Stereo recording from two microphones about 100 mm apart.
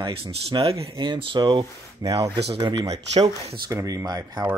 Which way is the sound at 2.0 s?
40° right (ahead or behind).